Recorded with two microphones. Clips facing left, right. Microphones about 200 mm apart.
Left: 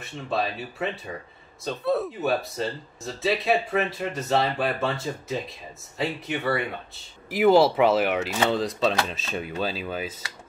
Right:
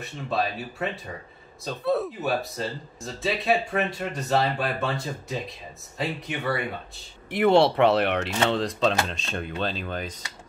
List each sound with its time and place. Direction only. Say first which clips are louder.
0.0 s speech: even; centre (ahead or behind)